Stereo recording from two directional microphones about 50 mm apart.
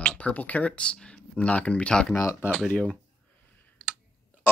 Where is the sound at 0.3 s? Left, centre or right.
Left.